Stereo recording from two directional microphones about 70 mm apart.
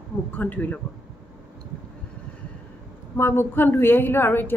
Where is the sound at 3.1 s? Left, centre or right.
Left.